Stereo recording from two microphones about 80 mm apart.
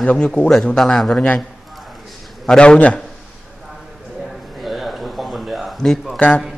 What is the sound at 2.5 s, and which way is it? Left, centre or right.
Speech, centre.